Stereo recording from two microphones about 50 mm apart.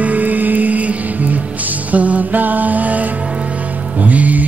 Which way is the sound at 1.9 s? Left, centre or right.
Right.